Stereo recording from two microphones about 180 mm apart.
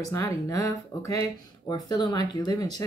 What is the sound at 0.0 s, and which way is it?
Speech, 20° left (ahead or behind).